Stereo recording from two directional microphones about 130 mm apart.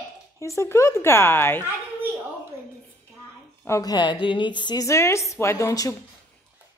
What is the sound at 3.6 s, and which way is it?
A woman's voice, 25° left (ahead or behind).